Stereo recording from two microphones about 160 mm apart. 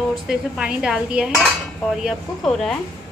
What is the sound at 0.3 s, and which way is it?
Speech, 5° right (ahead or behind).